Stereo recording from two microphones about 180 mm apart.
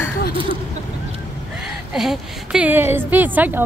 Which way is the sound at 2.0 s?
5° right (ahead or behind).